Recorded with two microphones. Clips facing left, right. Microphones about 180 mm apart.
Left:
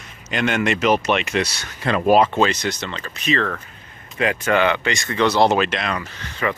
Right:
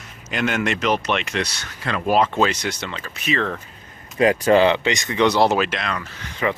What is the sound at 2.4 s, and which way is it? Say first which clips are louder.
Speech: left 1 dB; 10° right (ahead or behind).